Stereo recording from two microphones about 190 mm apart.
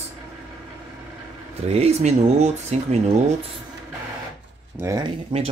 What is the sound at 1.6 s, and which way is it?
Speech, 30° right (ahead or behind).